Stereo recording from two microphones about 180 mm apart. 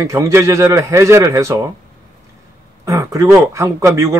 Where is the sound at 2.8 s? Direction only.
15° right (ahead or behind).